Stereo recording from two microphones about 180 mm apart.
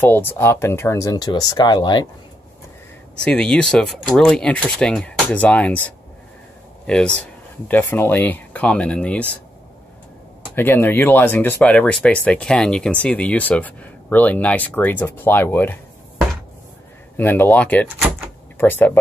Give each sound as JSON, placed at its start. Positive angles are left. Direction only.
{"t": 0.0, "sound": "speech", "side_deg": 10}
{"t": 3.3, "sound": "speech", "side_deg": 5}
{"t": 7.6, "sound": "speech", "side_deg": 10}
{"t": 10.5, "sound": "speech", "side_deg": 10}
{"t": 17.2, "sound": "speech", "side_deg": 10}